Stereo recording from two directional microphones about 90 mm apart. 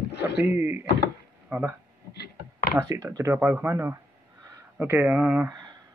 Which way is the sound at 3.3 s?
25° right (ahead or behind).